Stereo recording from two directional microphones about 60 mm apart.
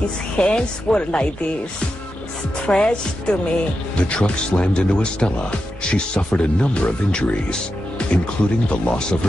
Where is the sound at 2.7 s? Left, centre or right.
Centre.